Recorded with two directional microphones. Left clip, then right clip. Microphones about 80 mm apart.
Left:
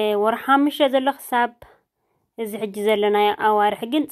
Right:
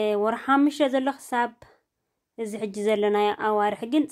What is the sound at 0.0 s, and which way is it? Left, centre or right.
Speech, left.